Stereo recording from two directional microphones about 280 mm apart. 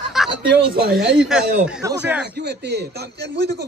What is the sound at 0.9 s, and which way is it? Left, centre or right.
Speech, centre.